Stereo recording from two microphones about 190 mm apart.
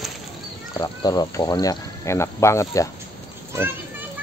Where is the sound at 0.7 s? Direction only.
20° left (ahead or behind).